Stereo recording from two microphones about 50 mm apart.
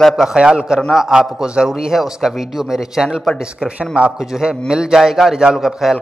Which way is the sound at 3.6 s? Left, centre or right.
Centre.